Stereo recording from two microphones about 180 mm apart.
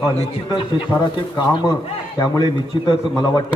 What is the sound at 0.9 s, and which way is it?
A man's voice, 20° left (ahead or behind).